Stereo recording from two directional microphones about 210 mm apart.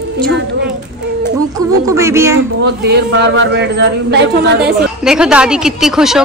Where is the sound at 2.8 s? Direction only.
55° right (ahead or behind).